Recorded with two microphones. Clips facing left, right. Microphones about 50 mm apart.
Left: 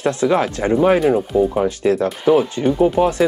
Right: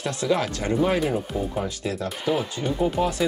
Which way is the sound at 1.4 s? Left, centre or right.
Left.